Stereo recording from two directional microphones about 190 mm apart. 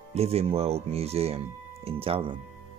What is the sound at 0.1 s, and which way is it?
Speech, 35° right (ahead or behind).